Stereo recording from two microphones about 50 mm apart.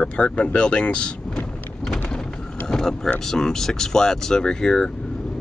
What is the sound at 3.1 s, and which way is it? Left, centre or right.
Speech, centre.